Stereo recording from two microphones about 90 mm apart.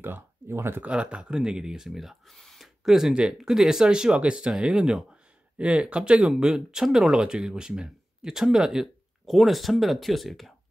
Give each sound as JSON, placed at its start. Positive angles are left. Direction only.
{"t": 0.0, "sound": "speech", "side_deg": -25}
{"t": 0.8, "sound": "speech", "side_deg": -10}